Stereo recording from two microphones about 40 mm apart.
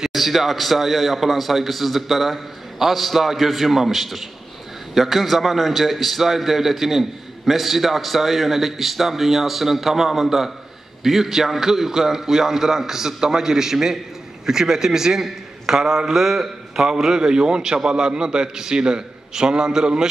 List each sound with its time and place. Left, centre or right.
0.0 s a man's voice: centre